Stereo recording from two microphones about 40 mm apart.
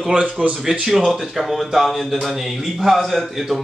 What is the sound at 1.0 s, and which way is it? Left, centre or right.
A man's voice, centre.